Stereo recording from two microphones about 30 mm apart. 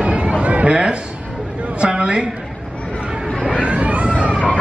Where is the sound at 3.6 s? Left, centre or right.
Right.